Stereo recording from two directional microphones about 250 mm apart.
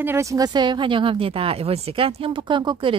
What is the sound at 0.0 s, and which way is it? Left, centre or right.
Speech, centre.